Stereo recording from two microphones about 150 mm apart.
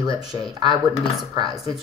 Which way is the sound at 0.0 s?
25° right (ahead or behind).